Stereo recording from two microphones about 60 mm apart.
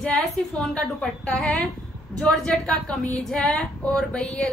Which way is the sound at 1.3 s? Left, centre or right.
Centre.